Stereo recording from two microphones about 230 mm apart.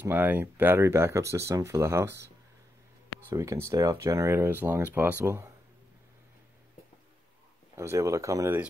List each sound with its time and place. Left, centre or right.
0.0 s speech: centre
3.3 s speech: centre
7.7 s speech: centre